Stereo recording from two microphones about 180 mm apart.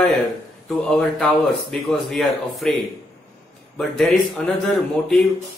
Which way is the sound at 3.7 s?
Centre (ahead or behind).